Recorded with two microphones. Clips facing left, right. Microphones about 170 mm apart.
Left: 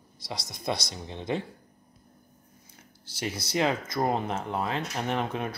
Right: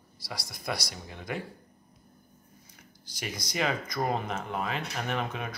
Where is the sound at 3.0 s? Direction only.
25° left (ahead or behind).